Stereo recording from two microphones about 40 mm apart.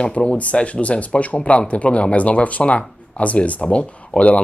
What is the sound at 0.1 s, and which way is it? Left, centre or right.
Speech, left.